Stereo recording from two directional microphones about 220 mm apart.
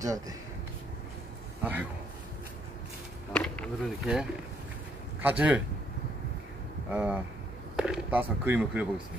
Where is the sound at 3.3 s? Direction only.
5° left (ahead or behind).